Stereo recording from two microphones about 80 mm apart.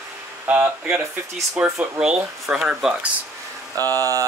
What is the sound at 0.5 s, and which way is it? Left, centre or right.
Speech, centre.